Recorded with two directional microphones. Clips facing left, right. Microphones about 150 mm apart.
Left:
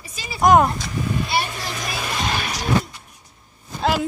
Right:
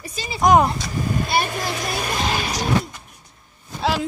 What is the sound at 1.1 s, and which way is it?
Speech, 50° right (ahead or behind).